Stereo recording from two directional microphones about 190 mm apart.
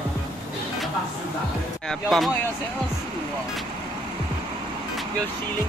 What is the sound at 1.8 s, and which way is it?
Speech, centre (ahead or behind).